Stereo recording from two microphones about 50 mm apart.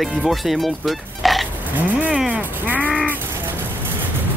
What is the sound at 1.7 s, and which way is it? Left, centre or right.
Speech, right.